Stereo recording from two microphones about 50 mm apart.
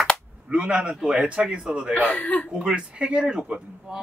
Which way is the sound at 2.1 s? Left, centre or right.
Left.